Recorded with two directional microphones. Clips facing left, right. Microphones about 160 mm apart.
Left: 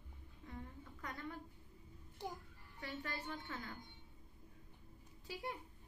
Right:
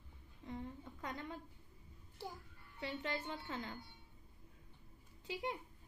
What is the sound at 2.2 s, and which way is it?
Speech, 15° left (ahead or behind).